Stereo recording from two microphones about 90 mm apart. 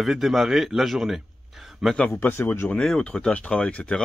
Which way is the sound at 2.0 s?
25° left (ahead or behind).